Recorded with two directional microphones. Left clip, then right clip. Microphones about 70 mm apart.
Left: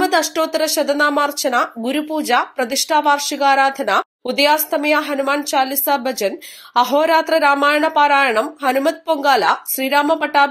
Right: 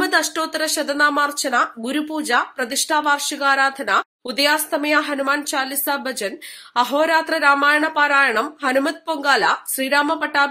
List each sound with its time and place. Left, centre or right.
0.0 s speech: left
1.6 s a woman's voice: left
9.2 s a woman's voice: left